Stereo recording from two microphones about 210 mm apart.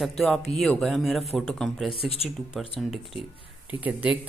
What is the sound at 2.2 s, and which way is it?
Speech, centre (ahead or behind).